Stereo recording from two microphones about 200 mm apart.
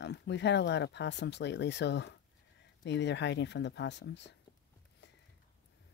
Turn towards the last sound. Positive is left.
turn(degrees=60)  # may be behind; listen again after turning